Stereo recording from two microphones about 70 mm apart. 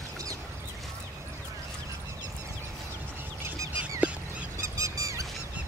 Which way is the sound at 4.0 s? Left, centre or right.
Centre.